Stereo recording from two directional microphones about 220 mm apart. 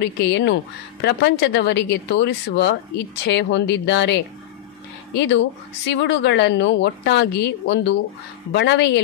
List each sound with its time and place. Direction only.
0.0 s speech: 55° left (ahead or behind)